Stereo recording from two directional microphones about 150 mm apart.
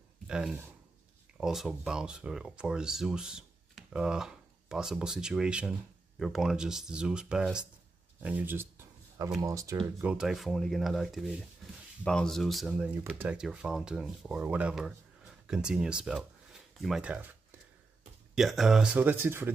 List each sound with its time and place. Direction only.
0.3 s speech: 5° right (ahead or behind)
8.2 s a sound: 10° right (ahead or behind)
9.4 s speech: 20° right (ahead or behind)
9.8 s speech: 5° right (ahead or behind)